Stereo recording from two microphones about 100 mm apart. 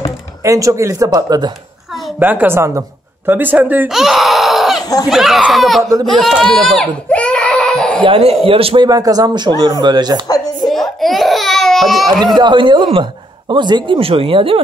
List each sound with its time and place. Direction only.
0.4 s speech: 30° right (ahead or behind)
2.1 s a woman's voice: 20° right (ahead or behind)
3.9 s a sound: 5° right (ahead or behind)
4.8 s speech: 40° left (ahead or behind)
5.1 s speech: 5° right (ahead or behind)
6.4 s baby cry: 5° left (ahead or behind)
8.0 s speech: 75° right (ahead or behind)
8.8 s speech: 40° right (ahead or behind)
10.6 s baby cry: centre (ahead or behind)
12.4 s speech: 50° right (ahead or behind)